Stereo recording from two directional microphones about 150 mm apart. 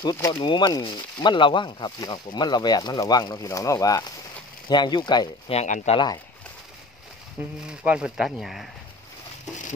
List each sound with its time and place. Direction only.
0.0 s speech: 25° left (ahead or behind)
5.5 s speech: 50° left (ahead or behind)
7.6 s speech: 5° right (ahead or behind)